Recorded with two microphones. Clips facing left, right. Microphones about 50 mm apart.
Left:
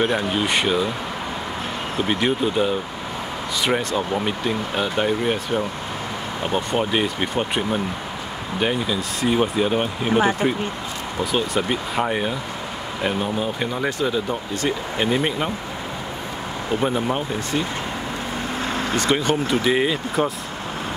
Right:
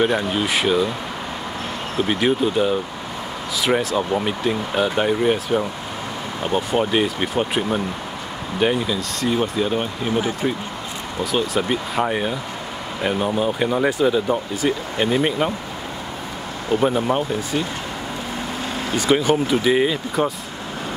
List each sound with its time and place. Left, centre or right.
0.0 s speech: centre
2.0 s speech: centre
9.3 s speech: centre
11.3 s speech: centre
16.8 s speech: centre
18.9 s speech: centre